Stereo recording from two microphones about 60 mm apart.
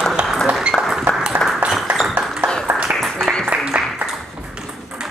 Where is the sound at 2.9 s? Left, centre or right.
Centre.